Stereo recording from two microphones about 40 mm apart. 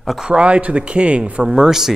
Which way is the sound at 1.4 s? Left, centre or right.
Centre.